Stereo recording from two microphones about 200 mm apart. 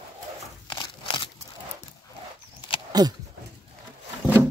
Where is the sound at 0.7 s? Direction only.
25° left (ahead or behind).